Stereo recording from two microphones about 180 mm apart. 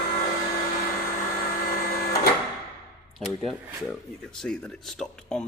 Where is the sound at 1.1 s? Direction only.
50° left (ahead or behind).